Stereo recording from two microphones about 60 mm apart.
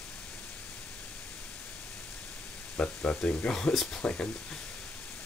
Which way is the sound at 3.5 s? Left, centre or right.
Centre.